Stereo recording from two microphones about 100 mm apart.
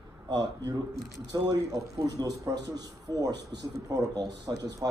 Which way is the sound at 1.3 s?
45° right (ahead or behind).